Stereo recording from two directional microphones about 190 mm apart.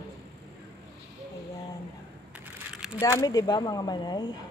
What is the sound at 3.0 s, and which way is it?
Speech, 15° left (ahead or behind).